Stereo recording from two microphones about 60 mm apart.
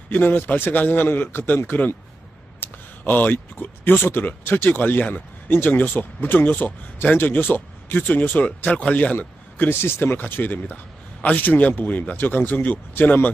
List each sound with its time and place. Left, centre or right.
0.1 s speech: left
2.6 s speech: left